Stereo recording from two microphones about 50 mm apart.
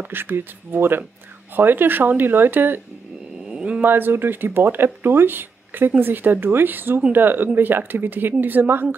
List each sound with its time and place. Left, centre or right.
0.1 s speech: right
3.4 s a sound: centre
3.8 s speech: right